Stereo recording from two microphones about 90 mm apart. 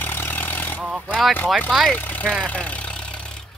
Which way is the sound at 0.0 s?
25° left (ahead or behind).